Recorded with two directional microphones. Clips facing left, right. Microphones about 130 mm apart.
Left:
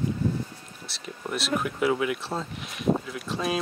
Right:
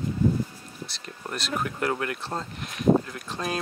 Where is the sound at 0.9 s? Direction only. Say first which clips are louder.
Left 5 dB; centre (ahead or behind).